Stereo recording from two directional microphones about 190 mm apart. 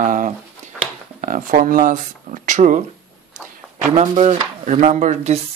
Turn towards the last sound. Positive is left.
turn(degrees=-35)  # may be behind; listen again after turning